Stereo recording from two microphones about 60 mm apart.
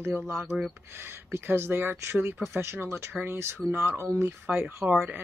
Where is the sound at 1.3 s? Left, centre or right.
Right.